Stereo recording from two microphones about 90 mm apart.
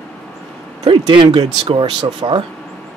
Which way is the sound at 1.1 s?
65° right (ahead or behind).